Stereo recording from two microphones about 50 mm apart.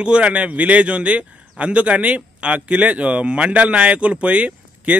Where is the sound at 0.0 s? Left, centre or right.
Right.